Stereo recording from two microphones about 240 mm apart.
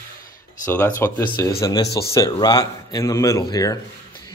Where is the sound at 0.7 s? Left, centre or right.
Centre.